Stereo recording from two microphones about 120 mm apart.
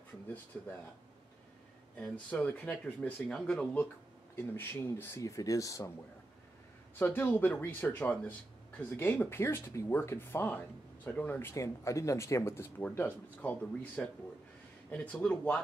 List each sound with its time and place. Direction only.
0.5 s speech: 10° left (ahead or behind)
2.0 s speech: 15° left (ahead or behind)
4.4 s speech: 20° left (ahead or behind)
7.0 s speech: 15° left (ahead or behind)